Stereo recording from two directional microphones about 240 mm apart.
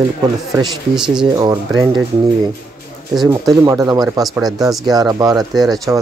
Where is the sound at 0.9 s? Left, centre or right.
Centre.